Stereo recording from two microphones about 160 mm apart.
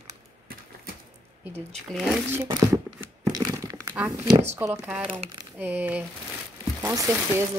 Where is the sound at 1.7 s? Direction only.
Centre (ahead or behind).